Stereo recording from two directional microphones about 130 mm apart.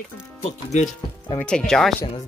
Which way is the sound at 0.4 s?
55° left (ahead or behind).